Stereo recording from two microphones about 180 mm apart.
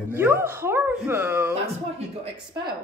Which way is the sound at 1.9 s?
30° right (ahead or behind).